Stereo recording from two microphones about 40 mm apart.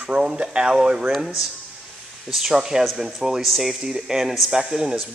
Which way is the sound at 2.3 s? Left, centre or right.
Centre.